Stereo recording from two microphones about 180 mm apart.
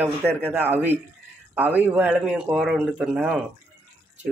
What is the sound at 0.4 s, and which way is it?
A man's voice, 10° right (ahead or behind).